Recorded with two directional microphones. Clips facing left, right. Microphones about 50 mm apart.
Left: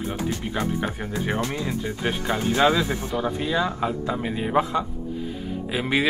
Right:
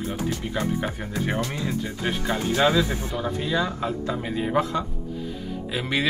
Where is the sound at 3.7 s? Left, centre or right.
Left.